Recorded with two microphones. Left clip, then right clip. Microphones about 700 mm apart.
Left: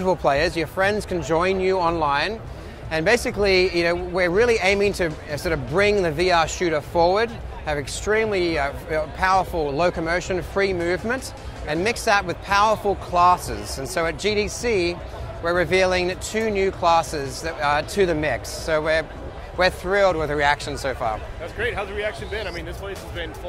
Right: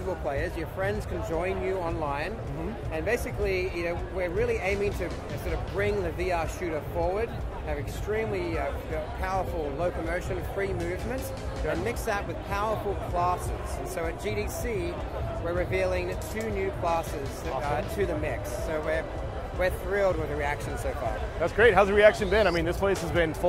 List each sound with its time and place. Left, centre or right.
0.3 s speech: left
21.5 s speech: right